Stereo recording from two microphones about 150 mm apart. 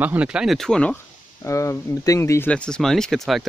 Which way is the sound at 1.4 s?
20° left (ahead or behind).